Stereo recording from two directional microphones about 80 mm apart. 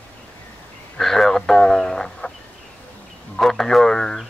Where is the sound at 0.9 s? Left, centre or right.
Centre.